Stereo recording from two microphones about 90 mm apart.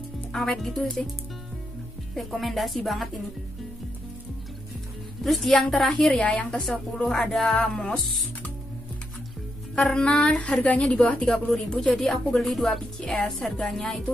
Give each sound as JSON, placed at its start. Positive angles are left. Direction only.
{"t": 0.3, "sound": "a woman's voice", "side_deg": 5}
{"t": 2.1, "sound": "a woman's voice", "side_deg": 0}
{"t": 5.2, "sound": "a woman's voice", "side_deg": 0}
{"t": 6.2, "sound": "a woman's voice", "side_deg": 15}
{"t": 9.8, "sound": "a woman's voice", "side_deg": 10}